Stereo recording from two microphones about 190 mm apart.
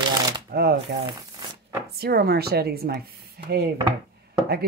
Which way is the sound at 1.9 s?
55° right (ahead or behind).